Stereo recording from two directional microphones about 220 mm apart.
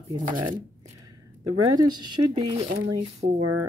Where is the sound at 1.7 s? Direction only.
20° right (ahead or behind).